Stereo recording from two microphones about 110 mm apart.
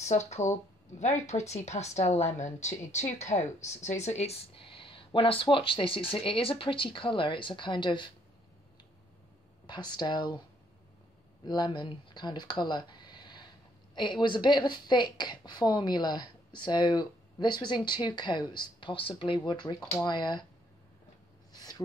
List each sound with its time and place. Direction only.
0.0 s a woman's voice: 90° left
4.6 s a woman's voice: 55° left (ahead or behind)
9.7 s speech: 40° left (ahead or behind)
11.4 s a woman's voice: 40° left (ahead or behind)
21.5 s a sound: 35° left (ahead or behind)